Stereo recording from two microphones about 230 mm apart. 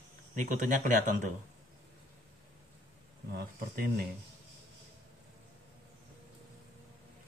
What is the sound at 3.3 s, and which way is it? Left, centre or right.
Speech, right.